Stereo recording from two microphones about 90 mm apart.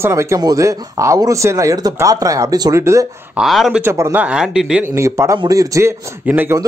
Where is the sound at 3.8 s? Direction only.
30° right (ahead or behind).